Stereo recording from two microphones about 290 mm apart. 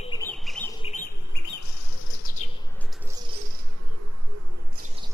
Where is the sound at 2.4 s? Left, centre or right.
Left.